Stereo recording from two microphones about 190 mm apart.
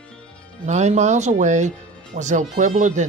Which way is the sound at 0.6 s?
40° right (ahead or behind).